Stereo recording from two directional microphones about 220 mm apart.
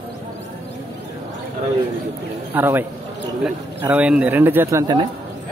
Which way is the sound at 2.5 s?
10° right (ahead or behind).